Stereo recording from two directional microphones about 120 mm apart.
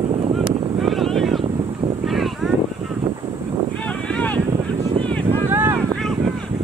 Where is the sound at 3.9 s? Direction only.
10° left (ahead or behind).